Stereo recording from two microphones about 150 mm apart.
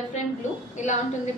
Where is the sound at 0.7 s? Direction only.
55° left (ahead or behind).